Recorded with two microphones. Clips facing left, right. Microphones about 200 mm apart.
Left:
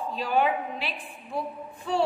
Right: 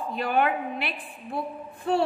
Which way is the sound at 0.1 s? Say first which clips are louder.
Right 1 dB; 60° right (ahead or behind).